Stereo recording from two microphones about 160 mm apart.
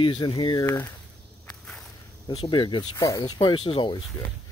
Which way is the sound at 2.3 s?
30° left (ahead or behind).